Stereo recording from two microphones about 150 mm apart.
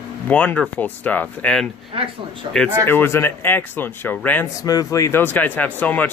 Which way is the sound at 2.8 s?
15° left (ahead or behind).